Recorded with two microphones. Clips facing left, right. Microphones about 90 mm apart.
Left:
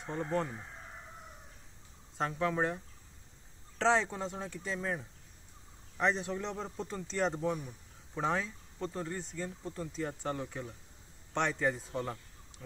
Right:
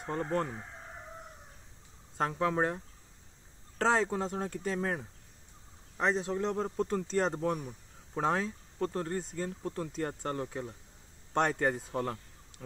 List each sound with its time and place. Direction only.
0.0 s speech: 55° right (ahead or behind)
2.3 s speech: 45° right (ahead or behind)
5.9 s speech: 35° right (ahead or behind); by 12.2 s 55° right (ahead or behind)